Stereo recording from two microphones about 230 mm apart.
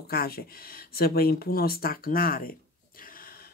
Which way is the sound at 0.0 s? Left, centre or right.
Left.